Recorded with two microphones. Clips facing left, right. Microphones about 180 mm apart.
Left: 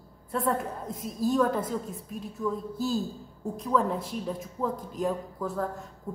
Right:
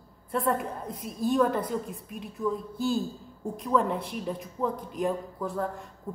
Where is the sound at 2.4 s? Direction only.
25° right (ahead or behind).